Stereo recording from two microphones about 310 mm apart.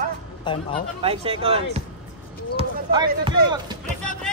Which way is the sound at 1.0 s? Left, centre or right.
Centre.